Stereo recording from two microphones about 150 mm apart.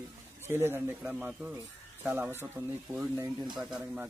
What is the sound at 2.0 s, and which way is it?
Speech, 15° right (ahead or behind).